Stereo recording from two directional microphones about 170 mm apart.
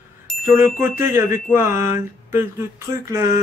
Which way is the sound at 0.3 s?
Centre (ahead or behind).